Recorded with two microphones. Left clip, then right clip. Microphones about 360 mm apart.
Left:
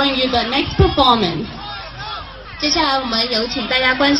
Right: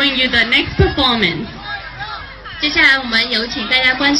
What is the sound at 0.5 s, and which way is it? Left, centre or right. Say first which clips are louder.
Speech: right 2 dB; centre.